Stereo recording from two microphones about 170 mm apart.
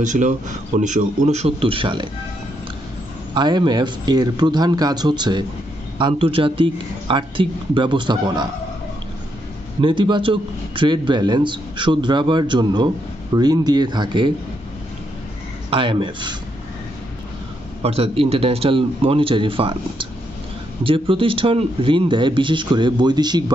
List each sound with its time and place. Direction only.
0.0 s a man's voice: 45° right (ahead or behind); by 2.0 s 30° right (ahead or behind)
3.3 s a man's voice: 25° right (ahead or behind)
9.8 s a man's voice: 30° right (ahead or behind)
15.7 s a man's voice: 30° right (ahead or behind)
17.8 s a man's voice: 35° right (ahead or behind)